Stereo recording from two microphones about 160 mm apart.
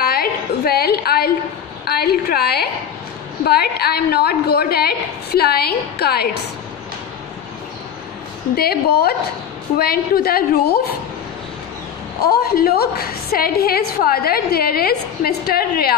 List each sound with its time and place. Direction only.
0.0 s a sound: 70° left (ahead or behind)
1.9 s a woman's voice: 75° left (ahead or behind)
8.5 s a woman's voice: 75° left (ahead or behind)
12.3 s a woman's voice: 75° left (ahead or behind)